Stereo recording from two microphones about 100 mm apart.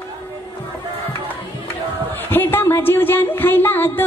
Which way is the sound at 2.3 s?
20° left (ahead or behind).